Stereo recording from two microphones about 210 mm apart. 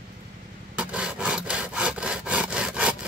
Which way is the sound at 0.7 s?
5° right (ahead or behind).